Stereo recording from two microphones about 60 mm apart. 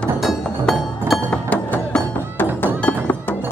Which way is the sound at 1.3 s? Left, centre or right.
Centre.